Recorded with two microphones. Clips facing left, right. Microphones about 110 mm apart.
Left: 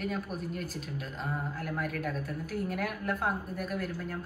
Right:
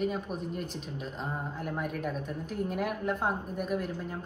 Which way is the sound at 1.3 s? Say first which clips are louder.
Left 2 dB; 20° right (ahead or behind).